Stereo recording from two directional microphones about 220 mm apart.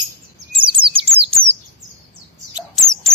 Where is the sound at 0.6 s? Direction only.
25° right (ahead or behind).